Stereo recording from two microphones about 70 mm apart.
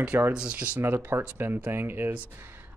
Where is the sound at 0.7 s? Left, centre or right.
Right.